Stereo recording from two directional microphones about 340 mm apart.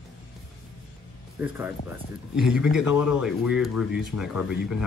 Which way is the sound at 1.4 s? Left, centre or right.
Centre.